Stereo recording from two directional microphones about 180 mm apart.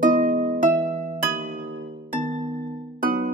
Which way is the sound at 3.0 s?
50° right (ahead or behind).